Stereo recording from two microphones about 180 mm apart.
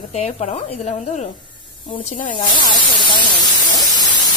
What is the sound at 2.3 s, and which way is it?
Spray, 25° left (ahead or behind).